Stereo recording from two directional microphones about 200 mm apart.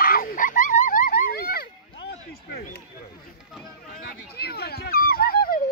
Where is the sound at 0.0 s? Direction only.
45° left (ahead or behind).